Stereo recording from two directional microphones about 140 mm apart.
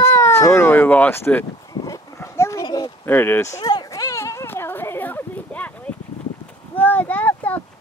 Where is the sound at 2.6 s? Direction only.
30° left (ahead or behind).